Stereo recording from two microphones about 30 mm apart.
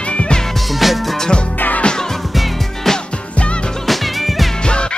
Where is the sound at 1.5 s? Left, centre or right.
Left.